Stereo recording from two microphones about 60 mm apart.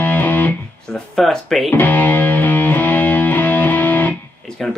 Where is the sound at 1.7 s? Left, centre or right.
Left.